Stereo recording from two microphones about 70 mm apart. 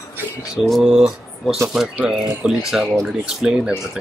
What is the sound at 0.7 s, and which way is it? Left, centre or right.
Speech, centre.